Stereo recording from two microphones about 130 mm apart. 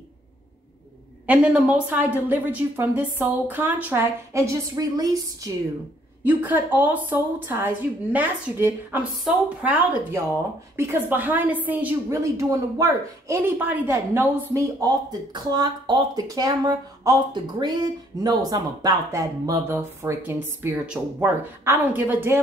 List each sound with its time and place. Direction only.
1.2 s a woman's voice: 10° right (ahead or behind); by 5.5 s 30° right (ahead or behind)
6.2 s a woman's voice: 15° right (ahead or behind)